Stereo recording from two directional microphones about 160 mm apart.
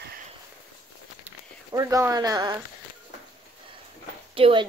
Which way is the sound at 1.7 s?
20° right (ahead or behind).